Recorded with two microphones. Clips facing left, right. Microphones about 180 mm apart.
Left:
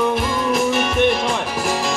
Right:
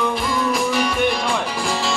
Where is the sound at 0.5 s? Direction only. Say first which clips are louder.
Left 2 dB; 25° left (ahead or behind).